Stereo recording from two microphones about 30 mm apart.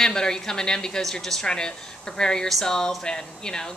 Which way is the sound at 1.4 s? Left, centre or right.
Left.